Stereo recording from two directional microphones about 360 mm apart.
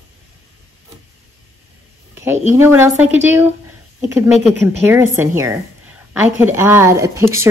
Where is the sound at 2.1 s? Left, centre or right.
Centre.